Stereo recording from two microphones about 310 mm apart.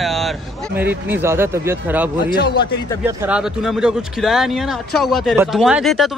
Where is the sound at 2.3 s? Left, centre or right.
Left.